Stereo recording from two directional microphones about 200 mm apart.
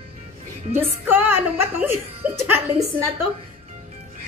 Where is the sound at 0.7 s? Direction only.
10° right (ahead or behind).